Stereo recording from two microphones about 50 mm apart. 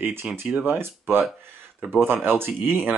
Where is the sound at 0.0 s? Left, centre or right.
Right.